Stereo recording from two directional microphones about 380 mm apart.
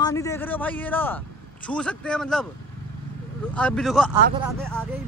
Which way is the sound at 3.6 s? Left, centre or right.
Centre.